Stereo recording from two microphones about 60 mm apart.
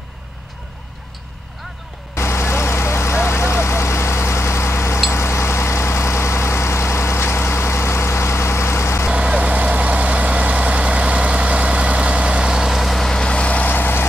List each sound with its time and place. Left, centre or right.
2.1 s vehicle: left
9.1 s vehicle: centre; by 14.0 s left